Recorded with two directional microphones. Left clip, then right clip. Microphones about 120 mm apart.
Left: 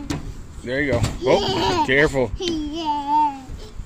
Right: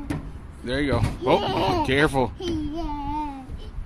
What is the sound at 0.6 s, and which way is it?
Speech, 20° right (ahead or behind).